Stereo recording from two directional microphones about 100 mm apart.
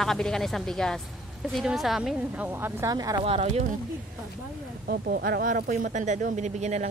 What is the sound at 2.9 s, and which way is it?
Speech, 40° right (ahead or behind).